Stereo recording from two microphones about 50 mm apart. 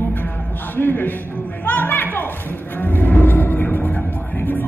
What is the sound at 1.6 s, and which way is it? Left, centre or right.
Music, left.